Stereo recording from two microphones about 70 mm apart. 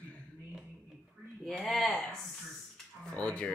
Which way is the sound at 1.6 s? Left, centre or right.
Centre.